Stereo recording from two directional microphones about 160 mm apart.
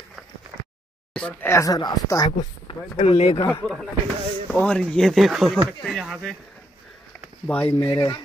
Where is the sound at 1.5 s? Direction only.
20° left (ahead or behind).